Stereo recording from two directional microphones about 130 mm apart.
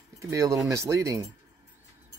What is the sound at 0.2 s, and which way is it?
Speech, 25° right (ahead or behind).